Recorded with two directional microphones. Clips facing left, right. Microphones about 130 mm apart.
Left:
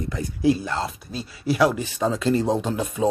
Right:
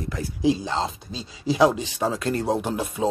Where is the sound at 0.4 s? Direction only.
90° right.